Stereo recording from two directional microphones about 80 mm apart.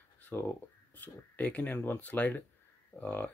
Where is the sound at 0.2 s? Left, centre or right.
Left.